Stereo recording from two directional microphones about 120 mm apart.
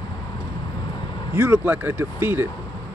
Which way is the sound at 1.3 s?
15° right (ahead or behind).